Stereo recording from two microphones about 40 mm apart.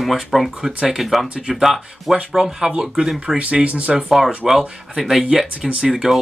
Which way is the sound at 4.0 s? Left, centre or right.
Centre.